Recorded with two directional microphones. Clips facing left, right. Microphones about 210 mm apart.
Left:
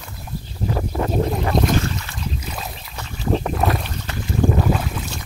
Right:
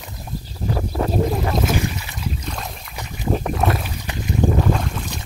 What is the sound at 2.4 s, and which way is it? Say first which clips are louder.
Boat: right 1 dB; 5° left (ahead or behind).